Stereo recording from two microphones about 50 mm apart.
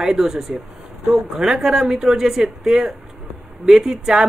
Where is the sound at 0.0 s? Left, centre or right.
Centre.